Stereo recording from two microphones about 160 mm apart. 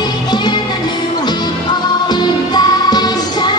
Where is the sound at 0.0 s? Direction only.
25° left (ahead or behind).